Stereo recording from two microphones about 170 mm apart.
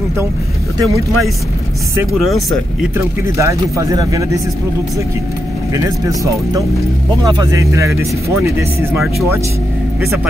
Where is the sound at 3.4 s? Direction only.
20° right (ahead or behind).